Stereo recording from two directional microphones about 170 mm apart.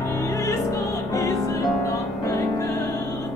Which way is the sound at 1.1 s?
20° left (ahead or behind).